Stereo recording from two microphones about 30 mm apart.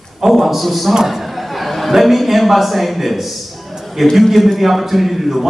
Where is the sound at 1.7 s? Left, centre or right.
Centre.